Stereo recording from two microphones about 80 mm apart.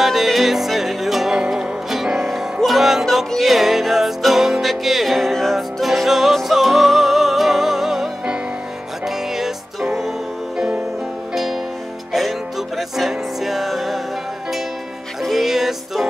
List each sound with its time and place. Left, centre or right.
0.0 s music: centre
12.1 s music: centre
15.2 s music: centre